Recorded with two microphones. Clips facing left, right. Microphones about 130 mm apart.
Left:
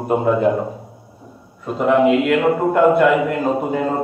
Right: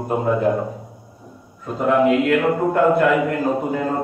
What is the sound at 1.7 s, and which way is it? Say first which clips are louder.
A man's voice: left 2 dB; 20° left (ahead or behind).